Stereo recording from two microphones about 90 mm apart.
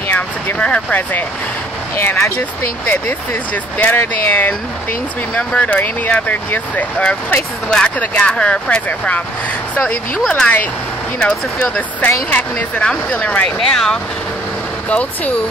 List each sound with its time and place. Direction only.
0.1 s a sound: 20° left (ahead or behind)
2.0 s speech: 25° left (ahead or behind)
3.7 s speech: 20° left (ahead or behind)